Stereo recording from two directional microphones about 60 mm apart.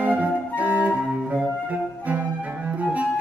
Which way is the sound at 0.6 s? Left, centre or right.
Right.